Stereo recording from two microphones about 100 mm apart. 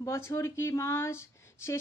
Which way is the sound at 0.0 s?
30° left (ahead or behind).